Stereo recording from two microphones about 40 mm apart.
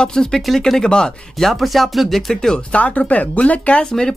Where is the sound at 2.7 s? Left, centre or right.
Left.